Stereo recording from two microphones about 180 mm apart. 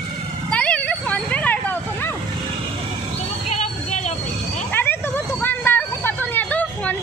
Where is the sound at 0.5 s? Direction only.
5° left (ahead or behind).